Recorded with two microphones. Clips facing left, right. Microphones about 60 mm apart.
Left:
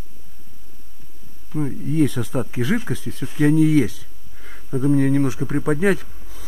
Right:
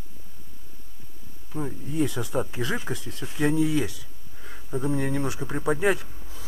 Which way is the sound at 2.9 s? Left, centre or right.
Left.